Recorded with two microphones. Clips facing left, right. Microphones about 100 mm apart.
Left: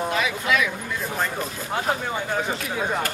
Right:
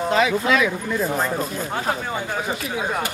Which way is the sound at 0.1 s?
35° right (ahead or behind).